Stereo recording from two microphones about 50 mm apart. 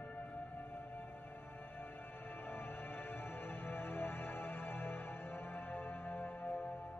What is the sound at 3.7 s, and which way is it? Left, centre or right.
Music, left.